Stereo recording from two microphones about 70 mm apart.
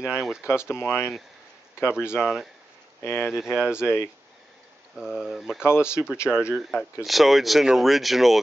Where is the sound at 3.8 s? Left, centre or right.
Left.